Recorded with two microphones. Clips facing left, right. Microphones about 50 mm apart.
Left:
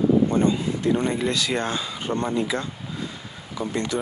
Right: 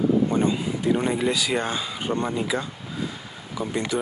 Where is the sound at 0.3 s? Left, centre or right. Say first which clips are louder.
Left 2 dB; centre.